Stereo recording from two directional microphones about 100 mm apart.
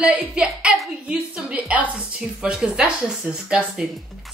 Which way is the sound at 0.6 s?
5° right (ahead or behind).